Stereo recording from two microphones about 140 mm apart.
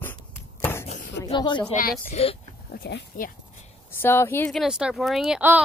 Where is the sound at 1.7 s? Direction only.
85° left.